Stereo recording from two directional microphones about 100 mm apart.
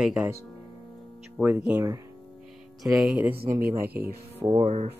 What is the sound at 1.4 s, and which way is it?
Speech, 15° right (ahead or behind).